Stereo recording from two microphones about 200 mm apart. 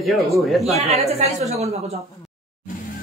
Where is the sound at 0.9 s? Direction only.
30° right (ahead or behind).